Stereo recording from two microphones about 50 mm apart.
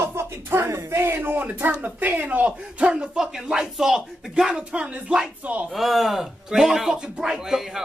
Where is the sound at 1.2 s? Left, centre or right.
Right; by 4.5 s centre.